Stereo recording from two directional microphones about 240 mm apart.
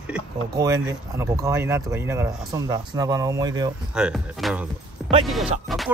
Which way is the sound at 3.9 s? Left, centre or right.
Centre.